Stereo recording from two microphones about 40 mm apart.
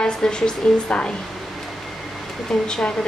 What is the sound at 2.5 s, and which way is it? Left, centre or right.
Speech, centre.